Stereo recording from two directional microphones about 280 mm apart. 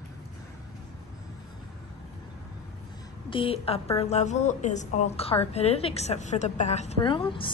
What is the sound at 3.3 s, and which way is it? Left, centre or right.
A woman's voice, centre.